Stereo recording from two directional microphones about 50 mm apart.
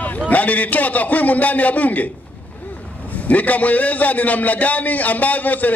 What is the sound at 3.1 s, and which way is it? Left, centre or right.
A man's voice, left.